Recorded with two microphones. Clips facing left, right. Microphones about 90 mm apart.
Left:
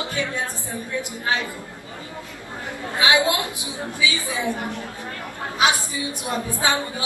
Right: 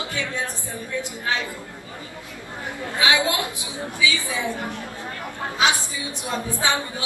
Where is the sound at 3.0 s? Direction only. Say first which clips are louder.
Left 2 dB; 20° left (ahead or behind).